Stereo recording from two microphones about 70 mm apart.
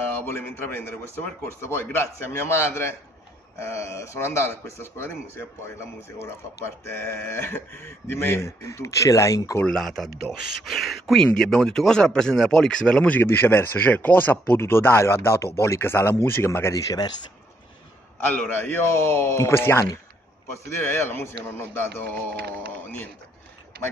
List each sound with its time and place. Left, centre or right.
0.3 s speech: left
9.7 s speech: centre
13.2 s speech: left
16.7 s speech: left
18.2 s speech: left